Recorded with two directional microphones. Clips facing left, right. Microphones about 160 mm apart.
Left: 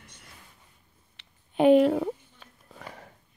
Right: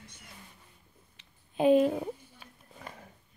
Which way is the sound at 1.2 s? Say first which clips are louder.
Left 5 dB; 75° left (ahead or behind).